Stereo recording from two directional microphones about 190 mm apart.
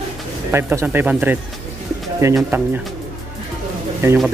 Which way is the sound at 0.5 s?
10° right (ahead or behind).